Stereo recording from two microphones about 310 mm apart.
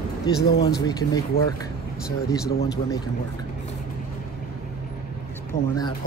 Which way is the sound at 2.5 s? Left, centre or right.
Left.